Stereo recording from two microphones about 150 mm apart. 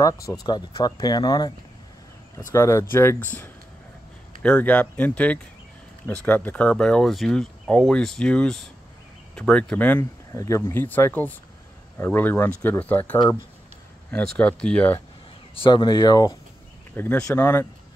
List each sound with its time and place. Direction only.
0.0 s speech: 20° left (ahead or behind)
2.5 s speech: 20° left (ahead or behind)
15.5 s speech: 30° left (ahead or behind)
16.9 s speech: 15° left (ahead or behind)